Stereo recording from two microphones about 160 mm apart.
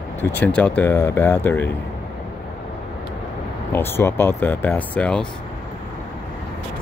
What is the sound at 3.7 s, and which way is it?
Speech, 15° left (ahead or behind).